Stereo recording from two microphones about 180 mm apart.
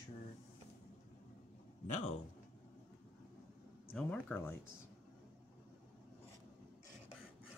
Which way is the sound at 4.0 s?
10° left (ahead or behind).